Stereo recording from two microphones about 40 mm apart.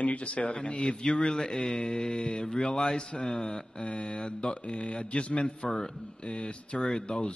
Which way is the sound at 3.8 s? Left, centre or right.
Left.